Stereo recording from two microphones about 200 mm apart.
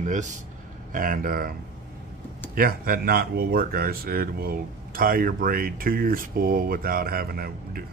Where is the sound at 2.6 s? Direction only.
45° right (ahead or behind).